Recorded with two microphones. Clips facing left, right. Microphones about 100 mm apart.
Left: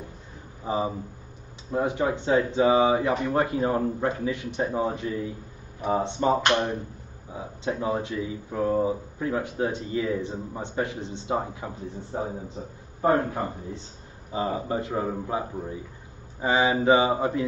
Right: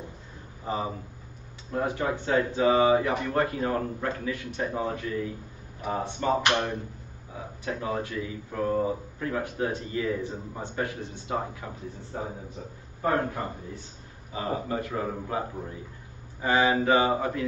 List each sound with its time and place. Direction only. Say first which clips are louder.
0.7 s speech: left 4 dB; 15° left (ahead or behind)
2.7 s speech: right 1 dB; 10° left (ahead or behind)
3.0 s speech: left 2 dB; 20° left (ahead or behind)
14.3 s speech: left 3 dB; 25° left (ahead or behind)